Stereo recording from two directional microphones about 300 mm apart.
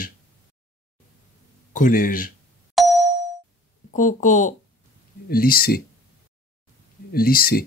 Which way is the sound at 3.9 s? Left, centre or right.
Left.